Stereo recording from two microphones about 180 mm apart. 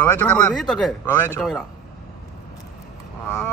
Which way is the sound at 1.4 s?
Centre (ahead or behind).